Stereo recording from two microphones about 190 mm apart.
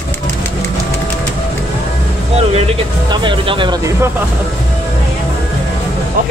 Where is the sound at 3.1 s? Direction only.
25° right (ahead or behind).